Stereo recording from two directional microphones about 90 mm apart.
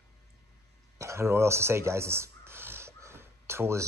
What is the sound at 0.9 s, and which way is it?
Speech, 30° right (ahead or behind).